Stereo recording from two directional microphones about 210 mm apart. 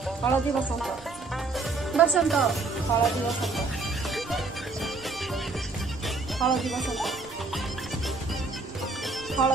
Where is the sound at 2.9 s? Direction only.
15° left (ahead or behind).